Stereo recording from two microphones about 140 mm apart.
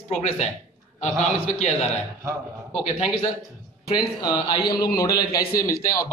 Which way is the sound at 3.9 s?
30° left (ahead or behind).